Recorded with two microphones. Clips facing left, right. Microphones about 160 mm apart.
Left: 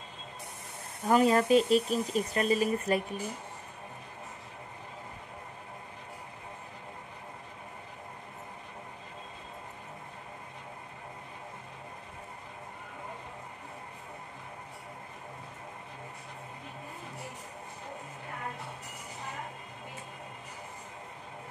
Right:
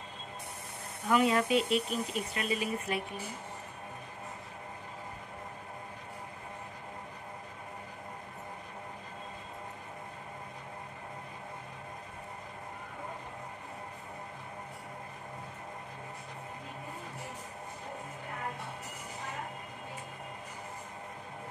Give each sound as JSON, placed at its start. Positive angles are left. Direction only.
{"t": 1.0, "sound": "speech", "side_deg": 40}